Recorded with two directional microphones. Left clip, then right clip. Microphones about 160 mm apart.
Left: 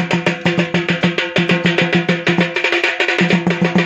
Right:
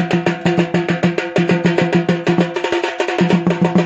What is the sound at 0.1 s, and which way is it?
Music, 50° right (ahead or behind).